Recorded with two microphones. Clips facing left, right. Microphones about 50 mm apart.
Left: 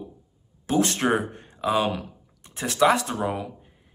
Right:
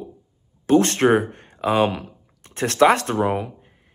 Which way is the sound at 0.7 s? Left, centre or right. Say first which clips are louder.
Right 6 dB; right.